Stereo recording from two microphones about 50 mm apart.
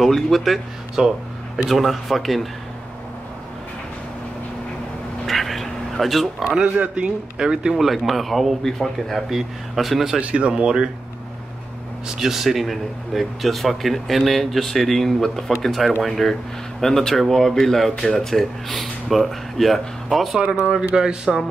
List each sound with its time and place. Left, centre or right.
0.0 s speech: centre
5.2 s a sound: centre
6.4 s speech: centre
7.7 s speech: centre
10.2 s speech: right
12.2 s speech: centre
20.6 s speech: centre